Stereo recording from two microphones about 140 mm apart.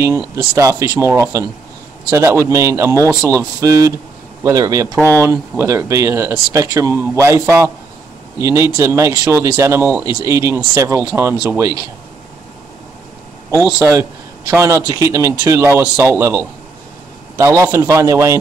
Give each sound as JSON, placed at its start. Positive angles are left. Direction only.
{"t": 0.0, "sound": "speech", "side_deg": -20}
{"t": 13.7, "sound": "speech", "side_deg": -20}